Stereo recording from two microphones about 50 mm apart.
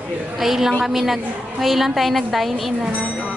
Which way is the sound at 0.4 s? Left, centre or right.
Centre.